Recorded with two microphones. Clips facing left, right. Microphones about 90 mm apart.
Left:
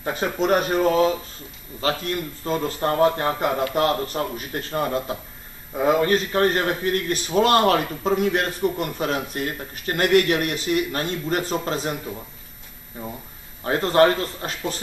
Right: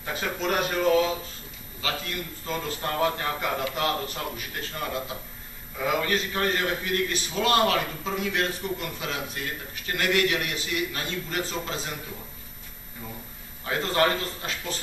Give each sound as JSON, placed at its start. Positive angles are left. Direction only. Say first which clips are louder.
{"t": 0.0, "sound": "a man's voice", "louder": "left 6 dB", "side_deg": 30}
{"t": 13.7, "sound": "a man's voice", "louder": "left 7 dB", "side_deg": 40}